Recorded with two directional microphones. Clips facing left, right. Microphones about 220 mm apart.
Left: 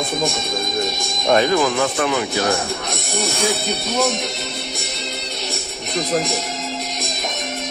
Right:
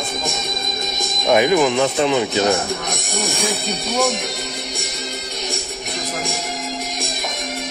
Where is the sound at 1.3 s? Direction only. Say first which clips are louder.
Right 2 dB; 15° right (ahead or behind).